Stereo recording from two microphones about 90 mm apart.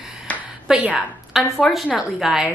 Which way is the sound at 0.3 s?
15° left (ahead or behind).